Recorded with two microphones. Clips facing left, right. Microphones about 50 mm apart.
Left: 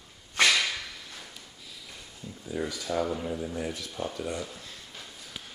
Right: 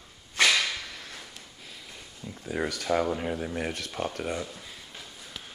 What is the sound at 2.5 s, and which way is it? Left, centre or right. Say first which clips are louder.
Speech: right 4 dB; right.